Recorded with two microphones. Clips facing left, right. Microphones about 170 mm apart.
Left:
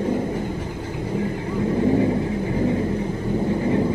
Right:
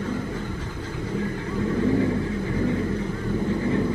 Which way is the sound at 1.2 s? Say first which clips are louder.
Left 3 dB; 20° left (ahead or behind).